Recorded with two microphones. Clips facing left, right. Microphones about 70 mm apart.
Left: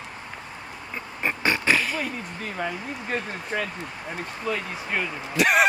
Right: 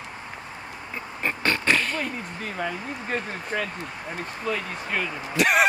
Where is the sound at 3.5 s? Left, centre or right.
Centre.